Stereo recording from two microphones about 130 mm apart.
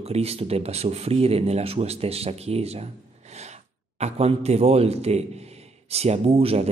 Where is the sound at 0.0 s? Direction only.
50° right (ahead or behind).